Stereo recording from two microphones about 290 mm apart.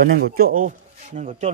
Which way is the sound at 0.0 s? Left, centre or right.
Right.